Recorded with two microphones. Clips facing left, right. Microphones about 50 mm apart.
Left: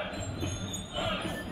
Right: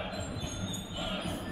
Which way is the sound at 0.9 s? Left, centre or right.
Left.